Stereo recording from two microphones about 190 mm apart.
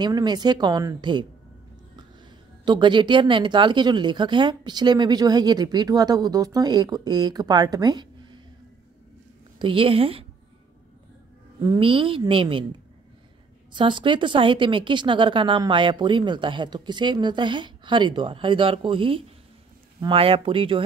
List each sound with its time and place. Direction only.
0.0 s speech: 20° right (ahead or behind)
2.6 s speech: 25° right (ahead or behind)
9.6 s speech: 30° right (ahead or behind)
11.6 s speech: 25° right (ahead or behind)
13.7 s speech: 25° right (ahead or behind)